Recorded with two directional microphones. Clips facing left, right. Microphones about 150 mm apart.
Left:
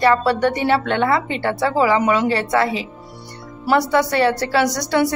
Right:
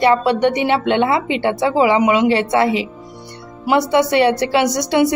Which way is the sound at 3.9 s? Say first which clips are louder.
Right 3 dB; 20° right (ahead or behind).